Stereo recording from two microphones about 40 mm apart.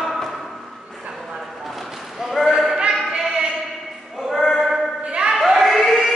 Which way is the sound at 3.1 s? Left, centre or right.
Centre.